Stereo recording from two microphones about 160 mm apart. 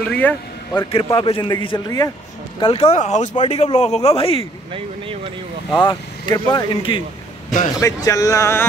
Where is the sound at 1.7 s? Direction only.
25° left (ahead or behind).